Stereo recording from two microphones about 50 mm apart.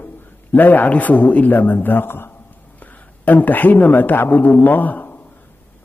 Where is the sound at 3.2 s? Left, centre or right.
Left.